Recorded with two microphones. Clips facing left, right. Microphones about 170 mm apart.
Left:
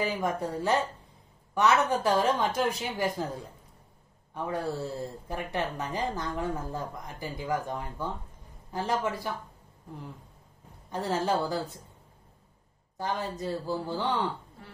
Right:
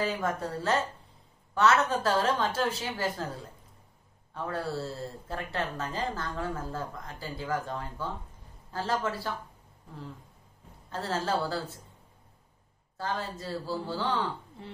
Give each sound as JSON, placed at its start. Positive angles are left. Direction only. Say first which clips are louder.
{"t": 0.0, "sound": "speech", "louder": "left 1 dB", "side_deg": 15}
{"t": 4.3, "sound": "speech", "louder": "left 2 dB", "side_deg": 15}
{"t": 10.9, "sound": "speech", "louder": "left 2 dB", "side_deg": 15}
{"t": 12.9, "sound": "speech", "louder": "left 2 dB", "side_deg": 15}